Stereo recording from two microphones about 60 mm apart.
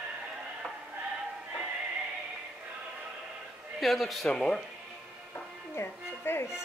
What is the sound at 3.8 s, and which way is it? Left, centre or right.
Speech, centre.